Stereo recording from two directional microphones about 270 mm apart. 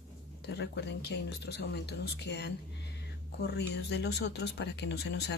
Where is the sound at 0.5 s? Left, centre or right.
Left.